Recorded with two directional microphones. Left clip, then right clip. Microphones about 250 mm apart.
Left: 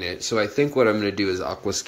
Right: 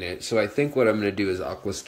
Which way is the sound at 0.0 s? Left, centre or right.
Centre.